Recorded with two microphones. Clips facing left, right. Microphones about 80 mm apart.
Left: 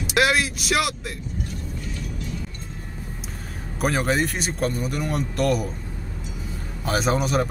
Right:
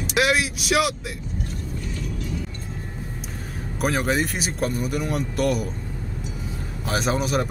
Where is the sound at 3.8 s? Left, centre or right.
Centre.